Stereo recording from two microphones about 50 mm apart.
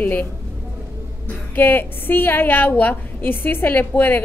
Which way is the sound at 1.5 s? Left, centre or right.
Left.